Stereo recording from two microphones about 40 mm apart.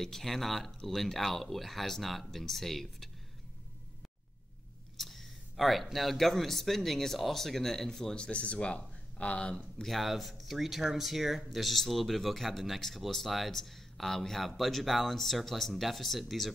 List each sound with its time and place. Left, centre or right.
0.0 s speech: centre
4.9 s a sound: centre
5.9 s speech: centre; by 9.6 s left
9.8 s speech: centre